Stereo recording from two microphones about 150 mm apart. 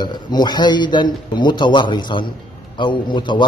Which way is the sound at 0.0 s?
30° left (ahead or behind).